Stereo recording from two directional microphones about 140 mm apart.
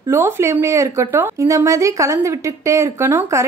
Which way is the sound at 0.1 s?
20° right (ahead or behind).